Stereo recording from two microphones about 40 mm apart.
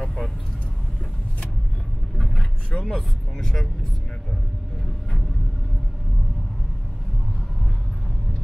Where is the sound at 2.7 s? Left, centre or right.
Left.